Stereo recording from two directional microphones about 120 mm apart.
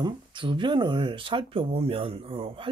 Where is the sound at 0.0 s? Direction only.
40° right (ahead or behind).